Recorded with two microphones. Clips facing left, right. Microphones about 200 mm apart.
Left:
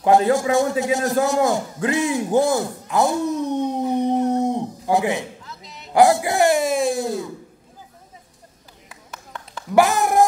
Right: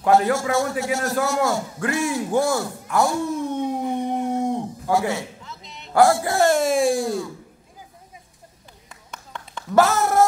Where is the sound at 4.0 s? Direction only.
20° left (ahead or behind).